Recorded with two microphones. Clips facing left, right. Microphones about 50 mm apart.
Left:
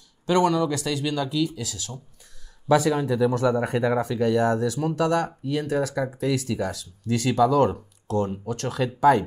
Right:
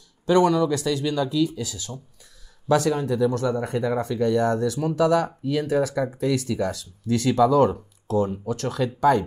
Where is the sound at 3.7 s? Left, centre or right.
Left.